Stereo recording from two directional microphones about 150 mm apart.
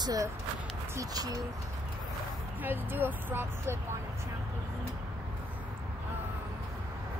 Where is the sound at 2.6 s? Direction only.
10° right (ahead or behind).